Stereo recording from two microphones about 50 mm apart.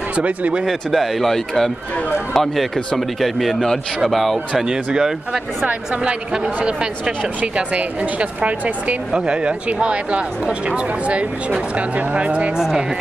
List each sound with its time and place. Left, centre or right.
0.1 s speech: right
0.7 s a man's voice: centre
4.6 s a man's voice: centre
12.5 s a man's voice: centre